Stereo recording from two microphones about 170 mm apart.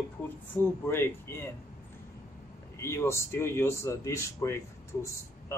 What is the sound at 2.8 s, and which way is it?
Speech, 15° left (ahead or behind).